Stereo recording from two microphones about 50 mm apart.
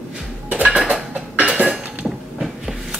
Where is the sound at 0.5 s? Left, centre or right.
Right.